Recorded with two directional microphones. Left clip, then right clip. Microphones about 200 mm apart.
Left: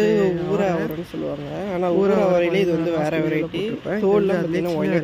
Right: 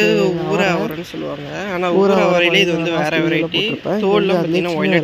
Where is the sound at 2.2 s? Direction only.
5° left (ahead or behind).